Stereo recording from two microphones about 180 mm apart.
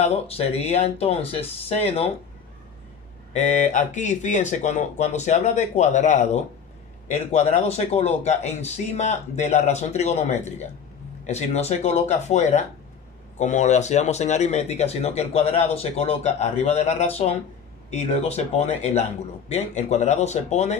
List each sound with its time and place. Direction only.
0.0 s speech: 35° left (ahead or behind)
3.3 s speech: 40° left (ahead or behind)